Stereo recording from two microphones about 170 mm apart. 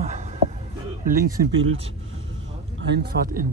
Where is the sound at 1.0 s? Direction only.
60° right (ahead or behind).